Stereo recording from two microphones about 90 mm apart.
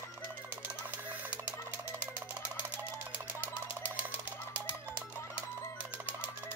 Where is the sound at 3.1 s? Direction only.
25° right (ahead or behind).